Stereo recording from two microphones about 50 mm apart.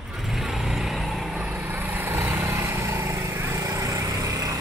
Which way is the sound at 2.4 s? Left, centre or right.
Right.